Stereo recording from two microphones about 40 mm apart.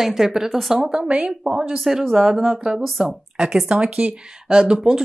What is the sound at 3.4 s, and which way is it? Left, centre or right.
Speech, centre.